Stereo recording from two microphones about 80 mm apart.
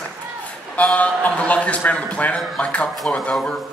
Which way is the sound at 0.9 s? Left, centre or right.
Centre.